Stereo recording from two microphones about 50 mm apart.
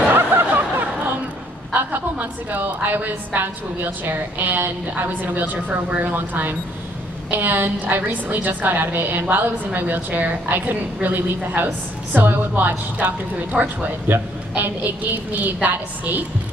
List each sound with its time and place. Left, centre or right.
0.1 s snicker: right
1.7 s a woman's voice: right